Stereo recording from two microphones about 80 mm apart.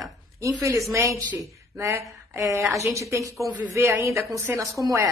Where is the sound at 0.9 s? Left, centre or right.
Right.